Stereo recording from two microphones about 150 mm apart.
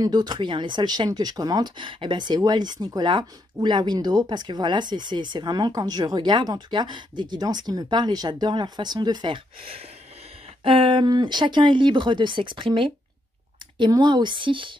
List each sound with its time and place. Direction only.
0.0 s speech: 30° right (ahead or behind)